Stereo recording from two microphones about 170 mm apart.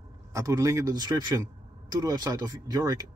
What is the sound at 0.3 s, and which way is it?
Speech, 20° right (ahead or behind).